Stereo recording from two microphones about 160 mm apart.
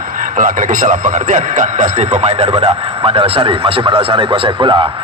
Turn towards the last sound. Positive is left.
turn(degrees=-30)  # may be behind; listen again after turning